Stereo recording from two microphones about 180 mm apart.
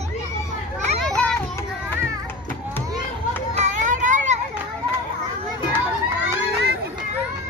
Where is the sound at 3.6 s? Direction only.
45° right (ahead or behind).